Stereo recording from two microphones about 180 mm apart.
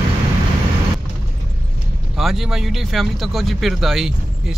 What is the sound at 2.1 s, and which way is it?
Speech, centre (ahead or behind).